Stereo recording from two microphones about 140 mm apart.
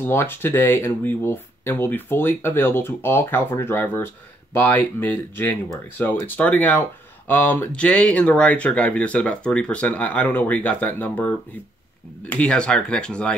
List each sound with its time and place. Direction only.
0.0 s speech: 15° left (ahead or behind)